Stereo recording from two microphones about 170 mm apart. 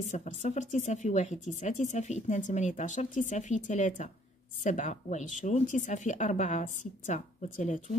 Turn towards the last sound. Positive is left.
turn(degrees=45)  # may be behind; listen again after turning